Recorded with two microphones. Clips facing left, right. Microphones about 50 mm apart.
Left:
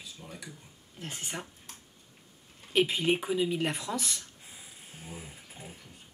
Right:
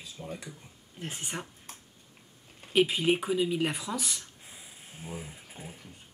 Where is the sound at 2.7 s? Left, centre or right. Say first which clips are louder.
Right 2 dB; centre.